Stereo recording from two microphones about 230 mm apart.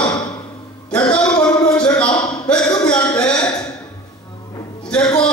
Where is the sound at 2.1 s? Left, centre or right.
Centre.